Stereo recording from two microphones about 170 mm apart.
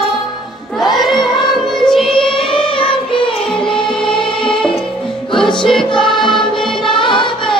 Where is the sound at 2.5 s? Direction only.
30° left (ahead or behind).